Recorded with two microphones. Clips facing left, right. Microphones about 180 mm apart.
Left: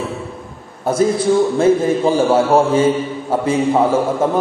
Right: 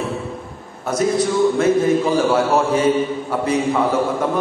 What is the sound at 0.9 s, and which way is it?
A man's voice, 30° left (ahead or behind).